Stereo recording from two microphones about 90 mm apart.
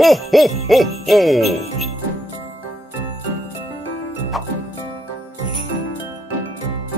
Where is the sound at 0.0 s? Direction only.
Centre (ahead or behind).